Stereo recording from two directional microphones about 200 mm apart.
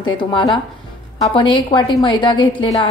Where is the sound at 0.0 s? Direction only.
25° left (ahead or behind).